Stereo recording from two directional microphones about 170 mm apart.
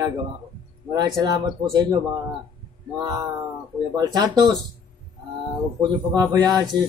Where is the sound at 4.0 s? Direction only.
20° right (ahead or behind).